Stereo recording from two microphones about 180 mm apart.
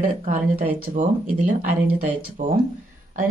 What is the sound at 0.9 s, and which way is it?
A woman's voice, 45° right (ahead or behind).